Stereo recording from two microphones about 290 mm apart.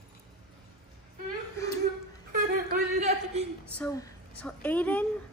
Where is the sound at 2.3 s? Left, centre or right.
Right.